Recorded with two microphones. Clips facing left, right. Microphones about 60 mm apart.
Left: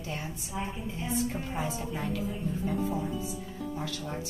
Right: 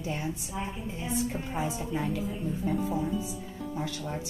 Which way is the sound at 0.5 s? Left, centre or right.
Centre.